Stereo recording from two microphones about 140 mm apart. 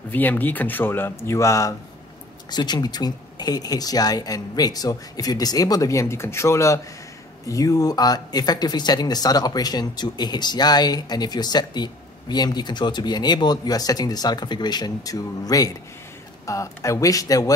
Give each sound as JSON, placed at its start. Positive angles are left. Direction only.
{"t": 0.1, "sound": "speech", "side_deg": 15}